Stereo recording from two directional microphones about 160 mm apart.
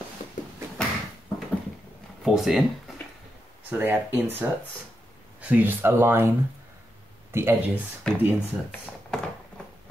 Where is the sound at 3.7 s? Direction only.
10° right (ahead or behind).